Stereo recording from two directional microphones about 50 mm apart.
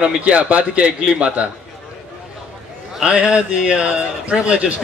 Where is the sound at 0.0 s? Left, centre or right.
Right.